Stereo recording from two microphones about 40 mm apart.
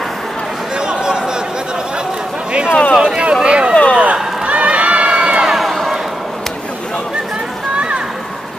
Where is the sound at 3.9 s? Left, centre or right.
Right.